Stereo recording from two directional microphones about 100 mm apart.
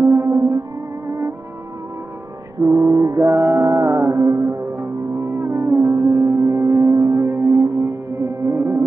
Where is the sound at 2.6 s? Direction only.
30° right (ahead or behind).